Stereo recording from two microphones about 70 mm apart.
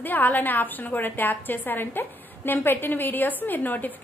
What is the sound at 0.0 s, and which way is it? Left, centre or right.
A woman's voice, left.